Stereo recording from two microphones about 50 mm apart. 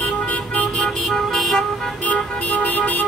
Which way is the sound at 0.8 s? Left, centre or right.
Centre.